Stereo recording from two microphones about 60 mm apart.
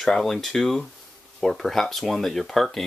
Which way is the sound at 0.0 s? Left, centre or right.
Centre.